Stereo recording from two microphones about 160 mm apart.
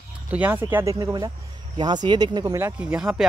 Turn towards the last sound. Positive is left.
turn(degrees=-5)  # may be behind; listen again after turning